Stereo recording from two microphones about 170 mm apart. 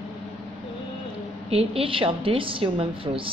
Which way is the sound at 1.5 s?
35° right (ahead or behind).